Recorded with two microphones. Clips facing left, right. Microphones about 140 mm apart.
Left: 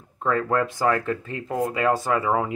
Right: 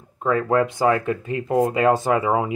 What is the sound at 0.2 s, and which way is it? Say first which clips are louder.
Speech: right 3 dB; 10° right (ahead or behind).